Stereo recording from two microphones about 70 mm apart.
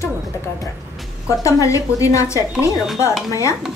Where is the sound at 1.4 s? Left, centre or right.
Left.